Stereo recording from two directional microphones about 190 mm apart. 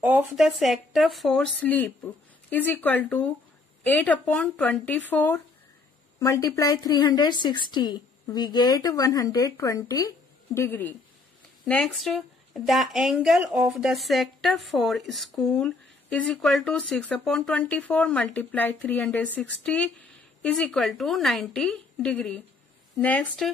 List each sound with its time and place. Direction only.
0.0 s a woman's voice: 10° right (ahead or behind)